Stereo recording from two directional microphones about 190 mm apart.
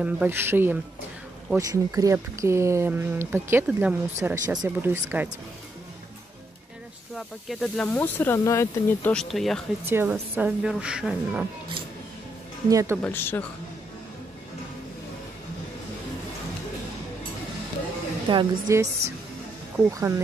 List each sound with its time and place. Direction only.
0.0 s speech: 10° right (ahead or behind)
7.2 s speech: centre (ahead or behind)
9.1 s speech: centre (ahead or behind)
9.8 s speech: 10° right (ahead or behind)
12.6 s speech: 15° right (ahead or behind)
13.0 s speech: 10° left (ahead or behind)
18.3 s a woman's voice: 25° right (ahead or behind)